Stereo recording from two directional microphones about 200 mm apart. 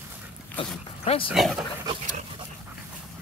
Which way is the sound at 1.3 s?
Centre (ahead or behind).